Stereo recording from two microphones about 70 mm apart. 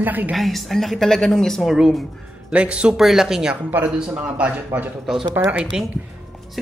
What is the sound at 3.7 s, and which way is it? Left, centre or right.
Speech, right.